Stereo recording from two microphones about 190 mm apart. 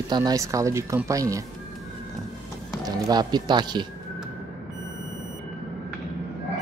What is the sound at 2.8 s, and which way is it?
Speech, 20° right (ahead or behind).